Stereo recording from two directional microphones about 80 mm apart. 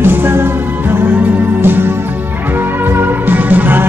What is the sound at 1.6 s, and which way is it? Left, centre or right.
Music, right.